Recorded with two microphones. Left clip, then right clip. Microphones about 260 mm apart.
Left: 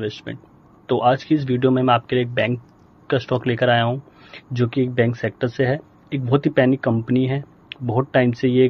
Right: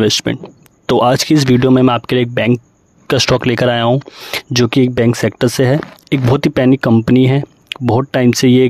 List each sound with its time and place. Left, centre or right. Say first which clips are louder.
0.0 s speech: right 15 dB; right